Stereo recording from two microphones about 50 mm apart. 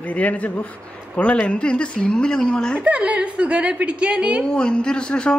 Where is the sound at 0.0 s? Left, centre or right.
Left; by 2.8 s centre.